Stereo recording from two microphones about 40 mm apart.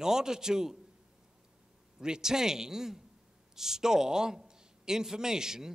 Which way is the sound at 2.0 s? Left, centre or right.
Centre.